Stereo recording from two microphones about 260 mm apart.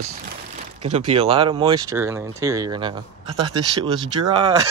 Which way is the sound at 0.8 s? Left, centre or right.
Right.